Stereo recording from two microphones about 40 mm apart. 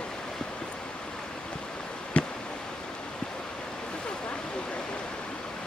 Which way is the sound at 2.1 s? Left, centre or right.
Left.